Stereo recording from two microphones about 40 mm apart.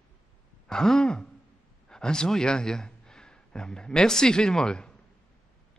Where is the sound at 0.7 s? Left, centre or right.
Centre.